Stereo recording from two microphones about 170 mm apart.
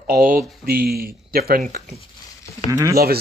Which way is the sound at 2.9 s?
65° right (ahead or behind).